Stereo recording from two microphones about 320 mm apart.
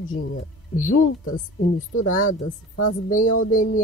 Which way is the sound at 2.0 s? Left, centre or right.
Left.